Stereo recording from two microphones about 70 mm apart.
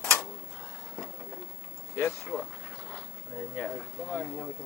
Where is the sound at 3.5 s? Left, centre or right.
Centre.